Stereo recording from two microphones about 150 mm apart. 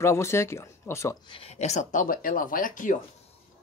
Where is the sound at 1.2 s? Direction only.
40° left (ahead or behind); by 3.0 s 60° left (ahead or behind).